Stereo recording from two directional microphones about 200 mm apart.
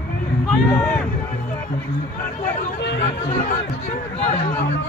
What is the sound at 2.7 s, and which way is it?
Speech, 60° left (ahead or behind).